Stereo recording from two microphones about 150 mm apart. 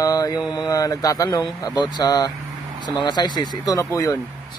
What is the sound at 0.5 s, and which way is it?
Speech, 25° left (ahead or behind).